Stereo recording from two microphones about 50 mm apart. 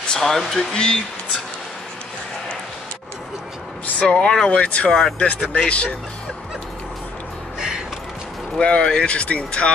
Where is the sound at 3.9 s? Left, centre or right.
Centre.